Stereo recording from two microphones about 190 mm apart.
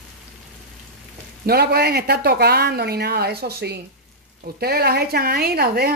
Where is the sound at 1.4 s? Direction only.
55° right (ahead or behind).